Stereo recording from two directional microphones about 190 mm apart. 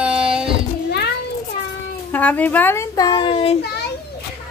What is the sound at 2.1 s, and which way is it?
A child's voice, 10° left (ahead or behind).